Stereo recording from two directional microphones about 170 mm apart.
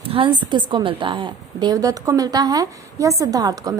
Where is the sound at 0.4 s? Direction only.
25° right (ahead or behind).